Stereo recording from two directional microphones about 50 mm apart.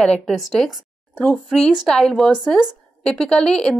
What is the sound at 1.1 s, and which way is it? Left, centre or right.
Speech, left.